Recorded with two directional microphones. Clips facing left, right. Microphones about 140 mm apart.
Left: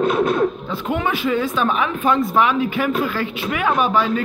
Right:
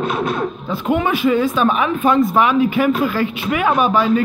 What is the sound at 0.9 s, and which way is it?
Speech, 15° right (ahead or behind).